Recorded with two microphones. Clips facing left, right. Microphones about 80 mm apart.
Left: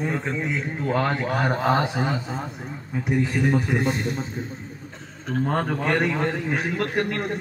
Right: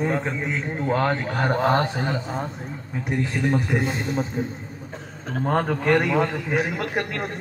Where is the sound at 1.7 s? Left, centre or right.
Centre.